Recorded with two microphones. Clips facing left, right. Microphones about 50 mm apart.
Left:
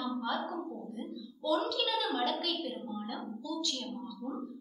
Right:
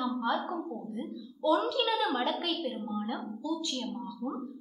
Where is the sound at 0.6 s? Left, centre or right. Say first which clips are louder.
Right 3 dB; right.